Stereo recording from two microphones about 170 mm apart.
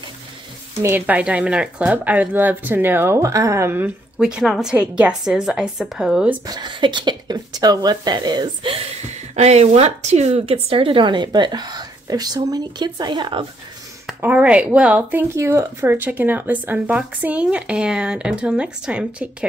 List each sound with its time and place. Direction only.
0.8 s speech: 10° right (ahead or behind)
6.4 s speech: 25° right (ahead or behind)
9.3 s speech: 40° right (ahead or behind)
14.2 s speech: 10° right (ahead or behind)